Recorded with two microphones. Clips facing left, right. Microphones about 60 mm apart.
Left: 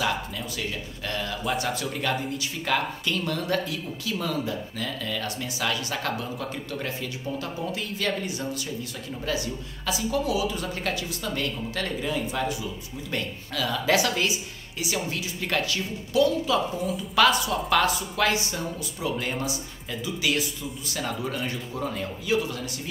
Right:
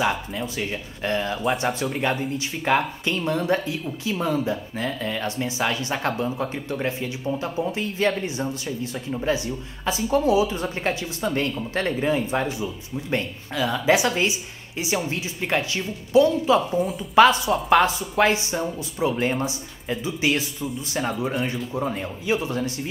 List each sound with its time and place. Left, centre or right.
0.0 s speech: right